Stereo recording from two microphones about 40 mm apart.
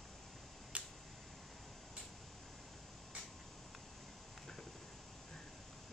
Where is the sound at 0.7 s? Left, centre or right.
Right.